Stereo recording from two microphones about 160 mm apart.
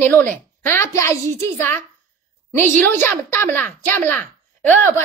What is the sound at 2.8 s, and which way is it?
A woman's voice, 15° left (ahead or behind).